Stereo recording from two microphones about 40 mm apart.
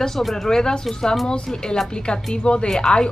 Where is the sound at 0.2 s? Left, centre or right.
Centre.